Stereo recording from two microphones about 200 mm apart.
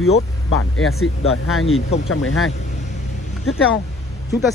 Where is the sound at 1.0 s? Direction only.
90° left.